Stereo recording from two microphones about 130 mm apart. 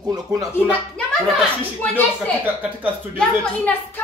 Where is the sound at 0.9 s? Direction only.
10° left (ahead or behind).